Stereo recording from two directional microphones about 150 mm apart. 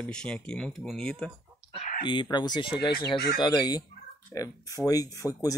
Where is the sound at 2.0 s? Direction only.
30° left (ahead or behind).